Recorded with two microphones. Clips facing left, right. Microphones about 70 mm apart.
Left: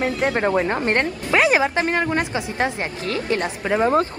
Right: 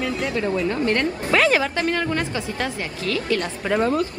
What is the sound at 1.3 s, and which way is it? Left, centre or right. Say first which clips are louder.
A woman's voice: left 1 dB; centre.